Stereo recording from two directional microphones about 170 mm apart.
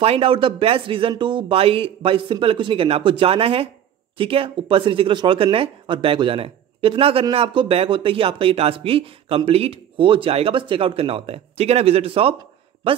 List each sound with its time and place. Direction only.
0.0 s speech: 35° right (ahead or behind)